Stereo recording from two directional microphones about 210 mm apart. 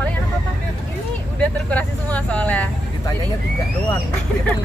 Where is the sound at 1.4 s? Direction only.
5° left (ahead or behind).